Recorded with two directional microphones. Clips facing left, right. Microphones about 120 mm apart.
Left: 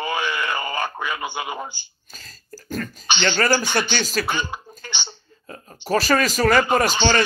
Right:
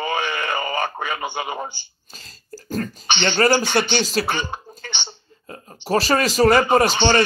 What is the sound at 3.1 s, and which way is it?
Speech, 55° right (ahead or behind).